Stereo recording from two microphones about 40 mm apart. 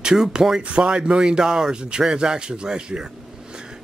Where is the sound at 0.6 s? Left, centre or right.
Right.